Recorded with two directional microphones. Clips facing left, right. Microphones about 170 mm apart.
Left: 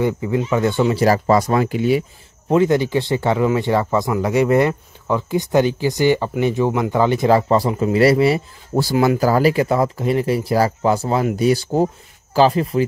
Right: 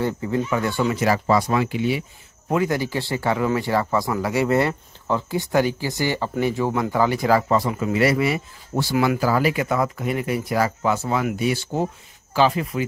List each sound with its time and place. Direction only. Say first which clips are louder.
0.0 s speech: left 4 dB; 15° left (ahead or behind); by 2.0 s 45° left (ahead or behind)
2.5 s speech: left 6 dB; 25° left (ahead or behind)